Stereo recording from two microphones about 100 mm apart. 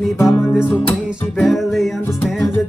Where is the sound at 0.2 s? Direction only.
20° left (ahead or behind).